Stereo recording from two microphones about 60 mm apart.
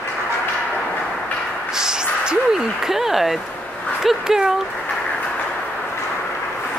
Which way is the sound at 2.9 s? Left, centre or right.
Centre.